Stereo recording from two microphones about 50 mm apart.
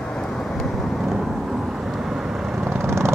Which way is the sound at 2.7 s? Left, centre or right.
Right.